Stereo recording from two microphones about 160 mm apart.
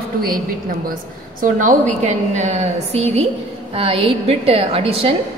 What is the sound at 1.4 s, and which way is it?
A woman's voice, 55° right (ahead or behind).